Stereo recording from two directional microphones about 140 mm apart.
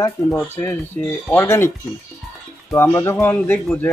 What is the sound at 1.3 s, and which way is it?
Speech, 20° left (ahead or behind).